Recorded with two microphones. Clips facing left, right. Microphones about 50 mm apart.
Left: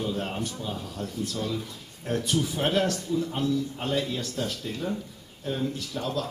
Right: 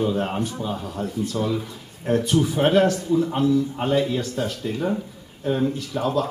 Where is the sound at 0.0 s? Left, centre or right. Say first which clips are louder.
Right 7 dB; centre.